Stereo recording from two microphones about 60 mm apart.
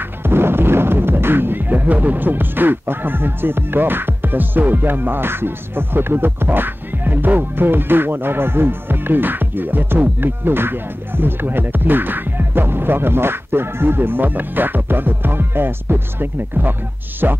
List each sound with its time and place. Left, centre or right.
0.2 s speech: right